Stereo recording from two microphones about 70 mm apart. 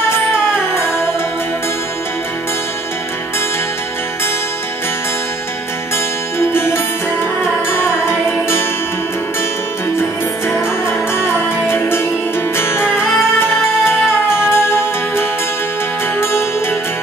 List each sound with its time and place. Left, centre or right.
6.5 s music: left
9.9 s music: left
14.5 s music: left